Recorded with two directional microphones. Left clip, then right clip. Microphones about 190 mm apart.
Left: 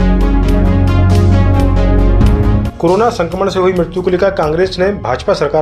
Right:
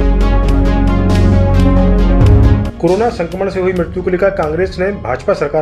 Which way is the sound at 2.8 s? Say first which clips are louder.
Left 2 dB; 20° left (ahead or behind).